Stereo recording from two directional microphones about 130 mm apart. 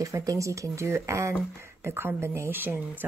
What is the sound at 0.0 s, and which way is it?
Speech, 25° right (ahead or behind).